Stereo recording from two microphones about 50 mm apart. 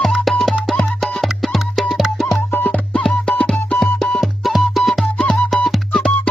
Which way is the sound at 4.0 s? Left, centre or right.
Centre.